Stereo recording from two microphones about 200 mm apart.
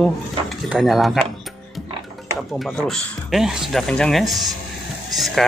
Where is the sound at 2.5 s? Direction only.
5° left (ahead or behind).